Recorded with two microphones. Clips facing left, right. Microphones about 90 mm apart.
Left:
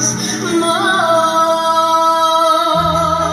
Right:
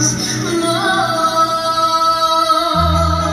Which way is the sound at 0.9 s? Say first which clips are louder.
Left 3 dB; 40° left (ahead or behind).